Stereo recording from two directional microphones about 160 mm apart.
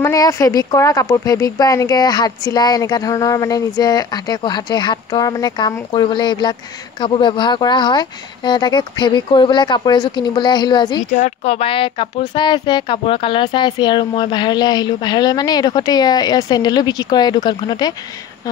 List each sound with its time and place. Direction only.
0.0 s speech: 20° left (ahead or behind)
11.1 s speech: 40° left (ahead or behind); by 17.9 s 25° left (ahead or behind)